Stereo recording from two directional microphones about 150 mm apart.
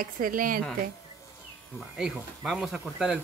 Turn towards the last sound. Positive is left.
turn(degrees=-5)  # may be behind; listen again after turning